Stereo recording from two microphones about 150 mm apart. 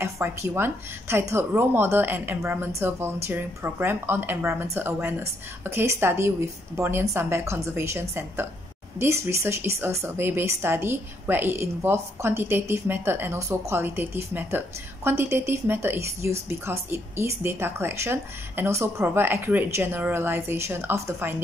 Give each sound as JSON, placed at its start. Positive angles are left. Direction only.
{"t": 0.0, "sound": "a woman's voice", "side_deg": -15}